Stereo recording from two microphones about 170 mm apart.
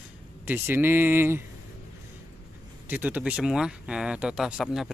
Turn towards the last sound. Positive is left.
turn(degrees=0)  # may be behind; listen again after turning